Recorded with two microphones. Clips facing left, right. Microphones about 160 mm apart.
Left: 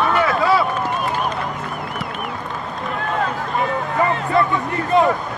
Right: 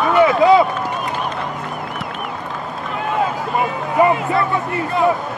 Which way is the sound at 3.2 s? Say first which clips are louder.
Right 2 dB; 10° right (ahead or behind).